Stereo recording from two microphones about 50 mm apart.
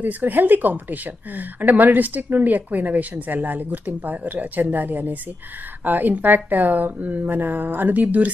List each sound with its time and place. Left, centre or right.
0.0 s speech: right